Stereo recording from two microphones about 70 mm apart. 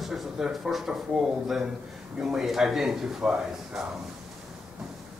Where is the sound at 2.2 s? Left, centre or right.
Centre.